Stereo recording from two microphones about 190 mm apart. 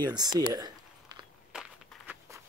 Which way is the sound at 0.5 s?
20° right (ahead or behind).